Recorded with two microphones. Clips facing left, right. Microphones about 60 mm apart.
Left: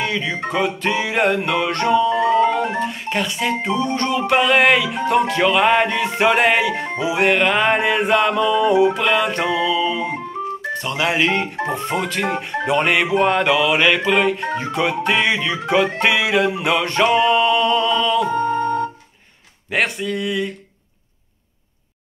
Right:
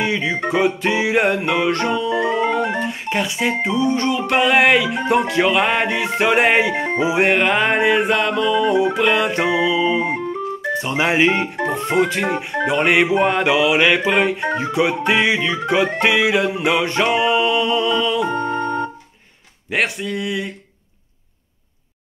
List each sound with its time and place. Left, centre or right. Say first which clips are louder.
0.0 s music: right 2 dB; centre
2.3 s organ: left 2 dB; centre
2.8 s music: even; centre
6.4 s music: right 1 dB; centre
10.7 s speech: right 3 dB; centre
11.5 s music: right 3 dB; centre
12.9 s music: right 2 dB; centre
18.3 s music: left 2 dB; right
19.7 s music: even; centre